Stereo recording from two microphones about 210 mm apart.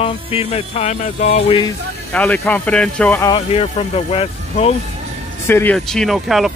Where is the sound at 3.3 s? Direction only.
30° left (ahead or behind).